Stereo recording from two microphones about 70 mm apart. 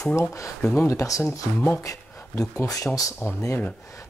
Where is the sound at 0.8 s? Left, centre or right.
Left.